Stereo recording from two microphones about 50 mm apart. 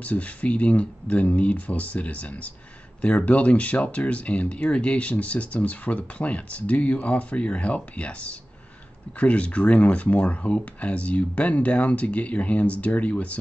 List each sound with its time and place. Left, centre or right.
0.0 s speech: left